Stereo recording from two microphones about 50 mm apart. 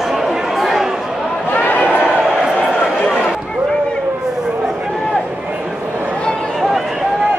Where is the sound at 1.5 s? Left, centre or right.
Left.